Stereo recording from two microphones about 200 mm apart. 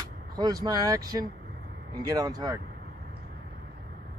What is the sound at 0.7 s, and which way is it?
Speech, 20° right (ahead or behind).